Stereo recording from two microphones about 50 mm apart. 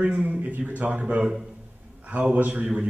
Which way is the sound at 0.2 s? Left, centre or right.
Right.